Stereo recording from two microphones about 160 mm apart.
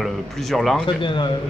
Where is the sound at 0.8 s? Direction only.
30° left (ahead or behind).